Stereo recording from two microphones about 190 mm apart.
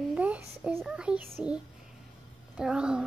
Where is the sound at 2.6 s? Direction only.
5° right (ahead or behind).